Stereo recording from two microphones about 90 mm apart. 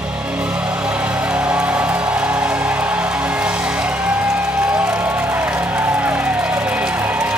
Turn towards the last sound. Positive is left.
turn(degrees=-20)  # may be behind; listen again after turning